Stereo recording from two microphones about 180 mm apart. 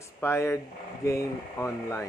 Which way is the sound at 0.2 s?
15° left (ahead or behind).